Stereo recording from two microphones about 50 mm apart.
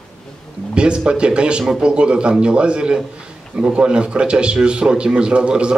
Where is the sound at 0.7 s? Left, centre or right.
Centre.